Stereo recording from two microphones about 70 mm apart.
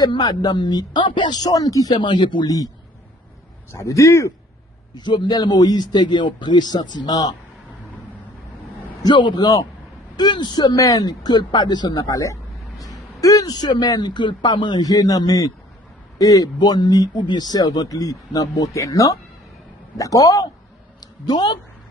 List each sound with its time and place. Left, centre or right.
0.0 s speech: left
3.7 s a man's voice: left
4.9 s speech: left
9.0 s speech: left
10.1 s speech: left
10.8 s speech: left
12.1 s a sound: left
13.6 s a man's voice: left
21.0 s a sound: left